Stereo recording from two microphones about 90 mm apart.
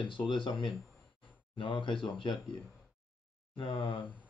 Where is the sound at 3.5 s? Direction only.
65° left (ahead or behind).